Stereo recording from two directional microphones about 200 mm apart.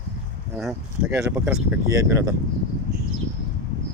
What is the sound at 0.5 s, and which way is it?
Speech, 5° right (ahead or behind).